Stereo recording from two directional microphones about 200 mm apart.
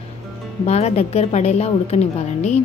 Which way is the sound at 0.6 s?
30° left (ahead or behind).